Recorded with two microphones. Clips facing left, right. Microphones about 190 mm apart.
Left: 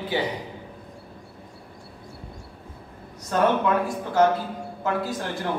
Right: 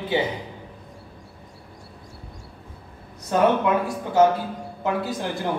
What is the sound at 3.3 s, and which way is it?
Speech, 15° right (ahead or behind).